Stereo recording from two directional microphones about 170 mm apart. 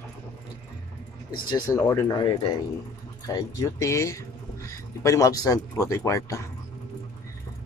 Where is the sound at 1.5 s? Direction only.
20° left (ahead or behind).